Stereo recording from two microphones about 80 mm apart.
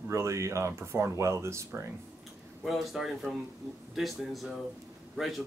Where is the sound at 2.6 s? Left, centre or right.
Centre.